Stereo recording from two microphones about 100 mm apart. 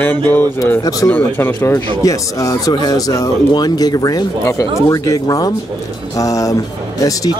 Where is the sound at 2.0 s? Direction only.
35° left (ahead or behind).